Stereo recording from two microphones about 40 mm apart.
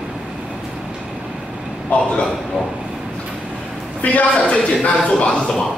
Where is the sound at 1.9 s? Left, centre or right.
Left.